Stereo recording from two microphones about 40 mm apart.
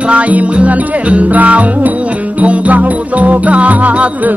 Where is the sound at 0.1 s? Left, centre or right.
Right.